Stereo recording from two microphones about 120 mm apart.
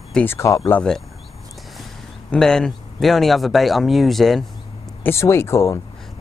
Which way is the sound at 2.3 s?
5° left (ahead or behind).